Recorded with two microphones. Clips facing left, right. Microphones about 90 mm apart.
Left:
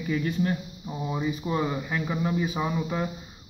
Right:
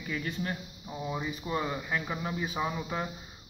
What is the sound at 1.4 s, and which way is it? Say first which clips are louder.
Speech: left 5 dB; 10° left (ahead or behind).